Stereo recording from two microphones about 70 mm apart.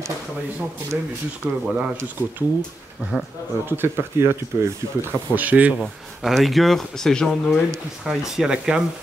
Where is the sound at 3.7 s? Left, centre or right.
Right.